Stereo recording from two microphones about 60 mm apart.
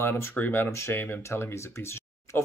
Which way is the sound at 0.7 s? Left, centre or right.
Left.